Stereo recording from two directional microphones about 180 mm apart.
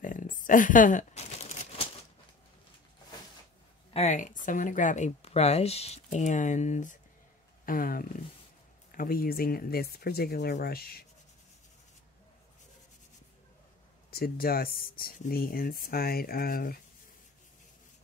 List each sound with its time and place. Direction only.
0.0 s crumpling: 45° left (ahead or behind)
3.9 s speech: 40° left (ahead or behind); by 11.1 s 60° left (ahead or behind)
14.1 s speech: 55° left (ahead or behind)